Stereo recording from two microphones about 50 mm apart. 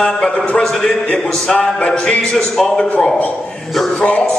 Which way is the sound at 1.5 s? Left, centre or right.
Centre.